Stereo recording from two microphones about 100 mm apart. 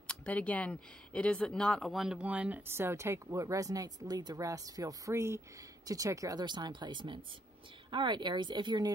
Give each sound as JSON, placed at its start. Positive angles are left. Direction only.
{"t": 0.0, "sound": "speech", "side_deg": 10}